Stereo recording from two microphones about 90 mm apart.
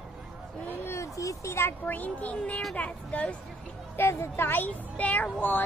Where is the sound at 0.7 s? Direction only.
30° left (ahead or behind); by 3.4 s 15° left (ahead or behind).